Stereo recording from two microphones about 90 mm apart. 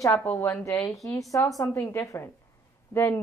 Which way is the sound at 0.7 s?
35° left (ahead or behind).